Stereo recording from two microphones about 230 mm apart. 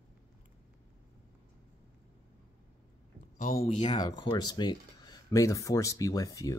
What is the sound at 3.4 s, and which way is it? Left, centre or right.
Speech, left.